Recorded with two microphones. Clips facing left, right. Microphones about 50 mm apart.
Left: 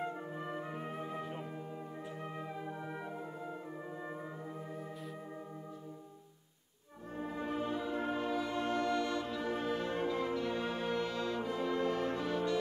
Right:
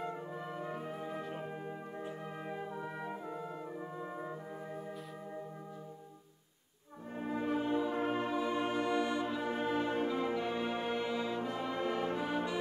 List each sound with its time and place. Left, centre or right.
0.0 s music: left
7.2 s music: right
7.7 s brass instrument: centre